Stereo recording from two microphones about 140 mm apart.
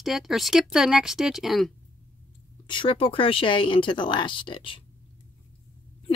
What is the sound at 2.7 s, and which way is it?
Speech, 35° left (ahead or behind).